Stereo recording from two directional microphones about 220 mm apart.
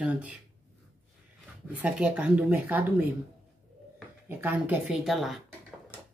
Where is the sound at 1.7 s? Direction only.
5° right (ahead or behind).